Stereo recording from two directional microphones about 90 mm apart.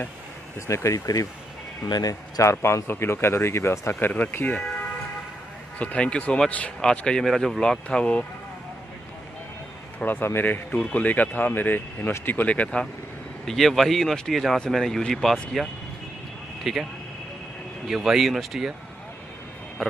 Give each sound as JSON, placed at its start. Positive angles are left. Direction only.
{"t": 0.6, "sound": "speech", "side_deg": 35}
{"t": 2.5, "sound": "speech", "side_deg": 25}
{"t": 4.1, "sound": "speech", "side_deg": 20}
{"t": 5.8, "sound": "speech", "side_deg": 15}
{"t": 9.9, "sound": "speech", "side_deg": 20}
{"t": 13.5, "sound": "speech", "side_deg": 0}
{"t": 17.8, "sound": "speech", "side_deg": -5}
{"t": 19.8, "sound": "speech", "side_deg": 5}